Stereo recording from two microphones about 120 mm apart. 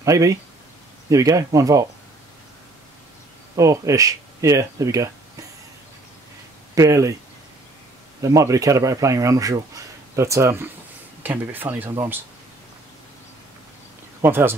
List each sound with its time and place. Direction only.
0.0 s speech: 25° right (ahead or behind)
3.5 s speech: 25° right (ahead or behind)
6.7 s speech: 25° right (ahead or behind)
8.2 s speech: 25° right (ahead or behind)
14.2 s speech: 20° right (ahead or behind)